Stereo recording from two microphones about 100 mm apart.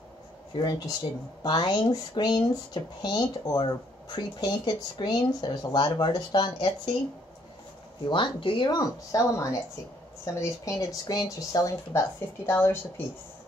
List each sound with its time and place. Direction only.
0.6 s speech: 45° left (ahead or behind)
8.1 s speech: 55° left (ahead or behind); by 12.0 s 35° left (ahead or behind)
12.4 s speech: 25° left (ahead or behind)